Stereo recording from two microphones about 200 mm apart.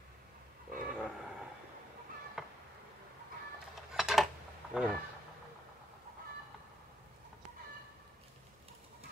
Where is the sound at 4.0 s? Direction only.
Centre (ahead or behind).